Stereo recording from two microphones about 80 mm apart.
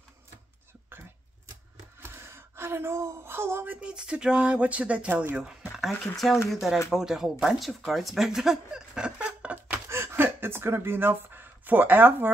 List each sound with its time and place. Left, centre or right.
2.0 s gasp: right
3.8 s speech: centre
9.8 s a sound: right